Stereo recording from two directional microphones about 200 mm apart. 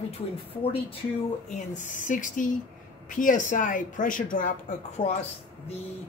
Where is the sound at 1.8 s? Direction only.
40° left (ahead or behind).